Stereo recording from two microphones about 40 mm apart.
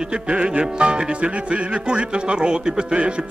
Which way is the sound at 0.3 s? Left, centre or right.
Right.